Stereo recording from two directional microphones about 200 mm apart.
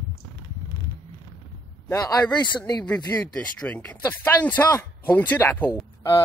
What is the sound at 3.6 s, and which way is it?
Speech, 5° left (ahead or behind).